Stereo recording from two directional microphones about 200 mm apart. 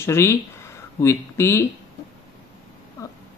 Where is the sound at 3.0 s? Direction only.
15° left (ahead or behind).